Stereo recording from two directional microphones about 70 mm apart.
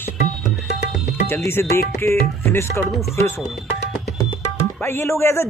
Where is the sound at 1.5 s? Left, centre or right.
Left.